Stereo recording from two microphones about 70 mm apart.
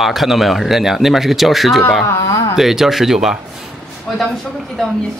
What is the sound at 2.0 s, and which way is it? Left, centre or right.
Speech, left.